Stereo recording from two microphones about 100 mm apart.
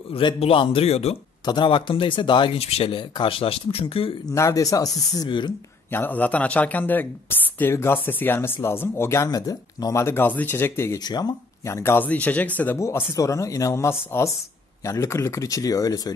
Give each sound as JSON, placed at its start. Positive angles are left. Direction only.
{"t": 0.1, "sound": "a man's voice", "side_deg": 55}
{"t": 0.4, "sound": "a man's voice", "side_deg": 65}
{"t": 1.4, "sound": "speech", "side_deg": 50}
{"t": 4.3, "sound": "speech", "side_deg": 35}
{"t": 5.9, "sound": "speech", "side_deg": 20}
{"t": 10.0, "sound": "speech", "side_deg": 20}
{"t": 11.1, "sound": "a man's voice", "side_deg": 45}
{"t": 11.6, "sound": "speech", "side_deg": 25}
{"t": 12.7, "sound": "speech", "side_deg": 30}